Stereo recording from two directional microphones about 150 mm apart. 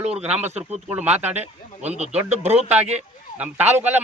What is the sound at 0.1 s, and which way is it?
A man's voice, 10° right (ahead or behind).